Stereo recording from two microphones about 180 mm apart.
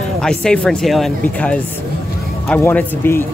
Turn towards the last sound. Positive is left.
turn(degrees=10)  # may be behind; listen again after turning